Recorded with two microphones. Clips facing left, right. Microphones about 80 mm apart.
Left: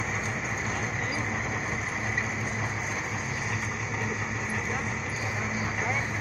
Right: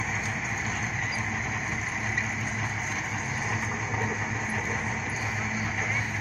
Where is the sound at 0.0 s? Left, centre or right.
Centre.